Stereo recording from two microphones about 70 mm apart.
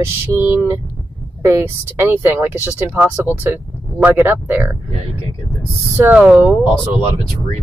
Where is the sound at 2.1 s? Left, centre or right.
Right.